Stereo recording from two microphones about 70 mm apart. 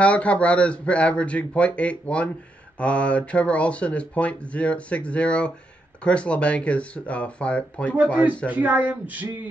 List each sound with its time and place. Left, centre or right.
0.0 s speech: centre
8.5 s speech: right